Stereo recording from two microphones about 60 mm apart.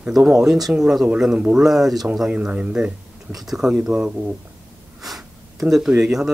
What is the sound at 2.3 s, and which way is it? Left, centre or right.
Speech, right.